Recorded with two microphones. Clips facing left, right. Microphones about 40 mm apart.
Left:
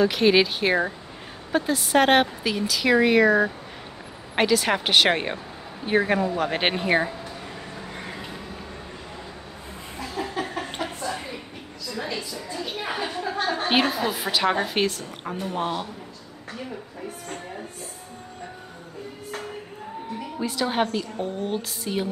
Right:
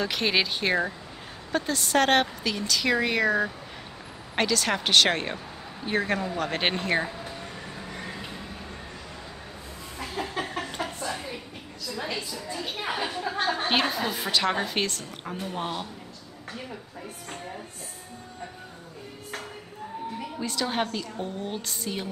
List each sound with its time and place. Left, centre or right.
0.0 s a woman's voice: centre
7.9 s vehicle: centre
10.2 s a sound: right
10.6 s chuckle: left
12.4 s a sound: centre
13.7 s a woman's voice: centre
20.3 s a woman's voice: centre